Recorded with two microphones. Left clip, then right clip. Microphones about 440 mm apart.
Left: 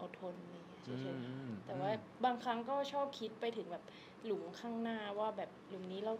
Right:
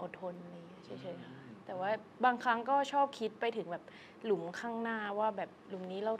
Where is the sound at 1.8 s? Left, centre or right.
Right.